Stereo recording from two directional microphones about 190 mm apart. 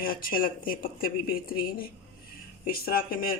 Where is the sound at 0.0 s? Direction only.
50° left (ahead or behind).